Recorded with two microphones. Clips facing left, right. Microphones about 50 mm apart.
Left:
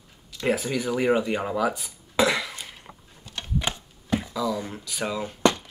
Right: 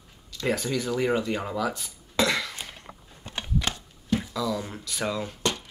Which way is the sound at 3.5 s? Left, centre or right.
Left.